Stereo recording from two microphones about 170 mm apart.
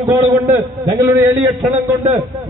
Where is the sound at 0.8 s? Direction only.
20° right (ahead or behind).